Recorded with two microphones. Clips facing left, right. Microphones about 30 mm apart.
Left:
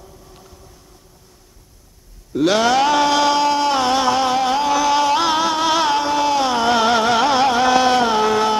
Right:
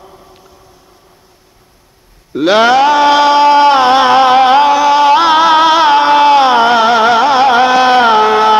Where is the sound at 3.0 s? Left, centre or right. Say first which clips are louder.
Right 9 dB; right.